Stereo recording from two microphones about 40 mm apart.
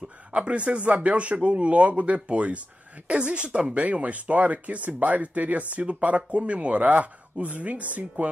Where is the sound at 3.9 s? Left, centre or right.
Right.